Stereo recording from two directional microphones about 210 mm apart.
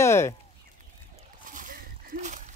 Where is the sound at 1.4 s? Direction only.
40° right (ahead or behind).